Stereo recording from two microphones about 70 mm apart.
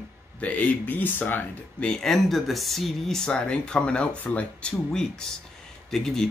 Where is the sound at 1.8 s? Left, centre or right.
Centre.